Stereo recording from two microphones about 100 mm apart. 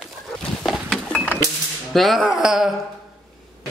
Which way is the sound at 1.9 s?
Centre (ahead or behind).